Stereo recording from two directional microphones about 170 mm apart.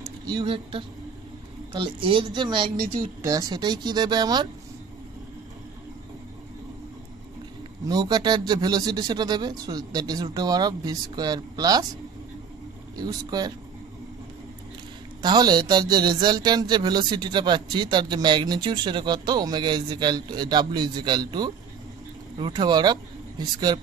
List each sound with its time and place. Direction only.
0.0 s speech: 25° right (ahead or behind)
7.8 s speech: 25° right (ahead or behind)
12.9 s speech: 25° right (ahead or behind)
15.2 s speech: 25° right (ahead or behind)